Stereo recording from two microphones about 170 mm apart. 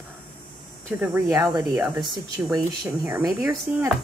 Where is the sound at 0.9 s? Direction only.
15° right (ahead or behind).